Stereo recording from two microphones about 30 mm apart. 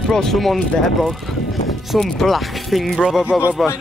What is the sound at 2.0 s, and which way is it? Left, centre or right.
Speech, centre.